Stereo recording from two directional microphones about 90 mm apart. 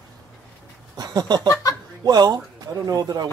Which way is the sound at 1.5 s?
35° left (ahead or behind).